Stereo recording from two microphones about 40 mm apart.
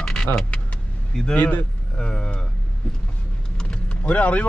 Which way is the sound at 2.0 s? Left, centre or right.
Left.